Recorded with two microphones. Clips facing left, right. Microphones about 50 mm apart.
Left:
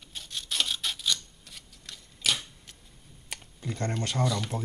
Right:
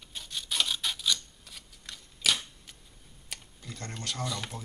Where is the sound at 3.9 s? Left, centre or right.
Centre.